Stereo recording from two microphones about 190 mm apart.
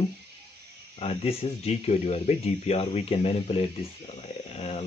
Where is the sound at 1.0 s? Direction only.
30° left (ahead or behind).